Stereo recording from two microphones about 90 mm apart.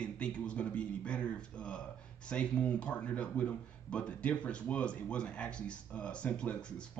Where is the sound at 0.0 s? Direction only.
10° left (ahead or behind).